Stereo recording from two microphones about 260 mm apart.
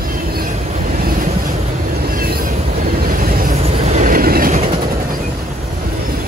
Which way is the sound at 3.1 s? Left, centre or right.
Right.